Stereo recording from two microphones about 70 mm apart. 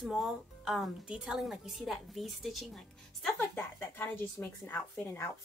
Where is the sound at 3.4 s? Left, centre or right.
Left.